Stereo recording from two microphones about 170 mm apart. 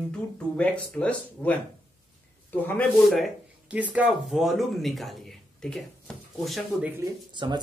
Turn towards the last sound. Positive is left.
turn(degrees=-25)  # may be behind; listen again after turning